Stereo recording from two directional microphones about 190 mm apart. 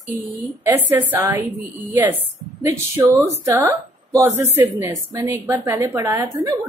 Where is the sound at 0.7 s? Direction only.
10° right (ahead or behind).